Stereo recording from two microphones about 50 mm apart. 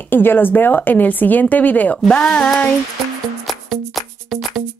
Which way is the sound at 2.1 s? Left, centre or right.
Centre.